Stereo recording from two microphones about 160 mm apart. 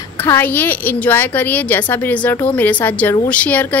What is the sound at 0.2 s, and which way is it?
A woman's voice, 15° left (ahead or behind).